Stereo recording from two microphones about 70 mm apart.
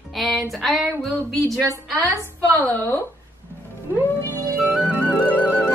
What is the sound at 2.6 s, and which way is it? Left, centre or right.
Speech, left.